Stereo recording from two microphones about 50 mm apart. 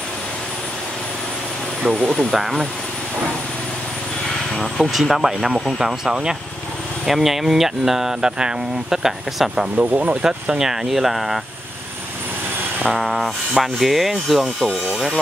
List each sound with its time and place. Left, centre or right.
2.0 s speech: centre
2.3 s speech: centre
4.6 s speech: centre
9.8 s speech: right
10.6 s speech: centre
12.9 s speech: centre